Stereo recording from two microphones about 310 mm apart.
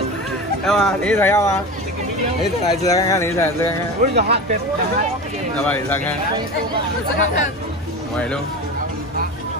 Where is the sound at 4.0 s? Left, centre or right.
Right.